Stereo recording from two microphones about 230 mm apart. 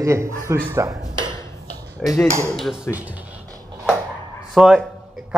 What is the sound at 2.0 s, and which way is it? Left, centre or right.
A man's voice, centre.